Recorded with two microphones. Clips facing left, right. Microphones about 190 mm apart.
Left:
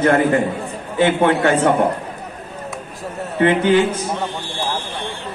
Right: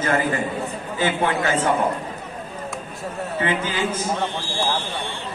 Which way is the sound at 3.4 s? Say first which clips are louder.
Left 10 dB; 65° left (ahead or behind).